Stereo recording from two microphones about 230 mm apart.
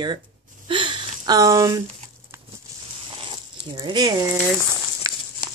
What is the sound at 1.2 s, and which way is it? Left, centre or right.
Speech, centre.